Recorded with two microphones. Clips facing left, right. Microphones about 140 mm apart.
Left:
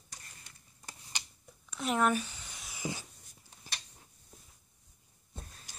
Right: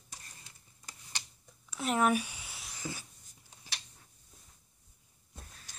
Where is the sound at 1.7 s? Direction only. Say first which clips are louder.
Right 1 dB; 5° right (ahead or behind).